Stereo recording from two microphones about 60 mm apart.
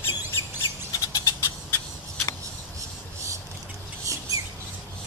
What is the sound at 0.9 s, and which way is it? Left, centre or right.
Cat, left.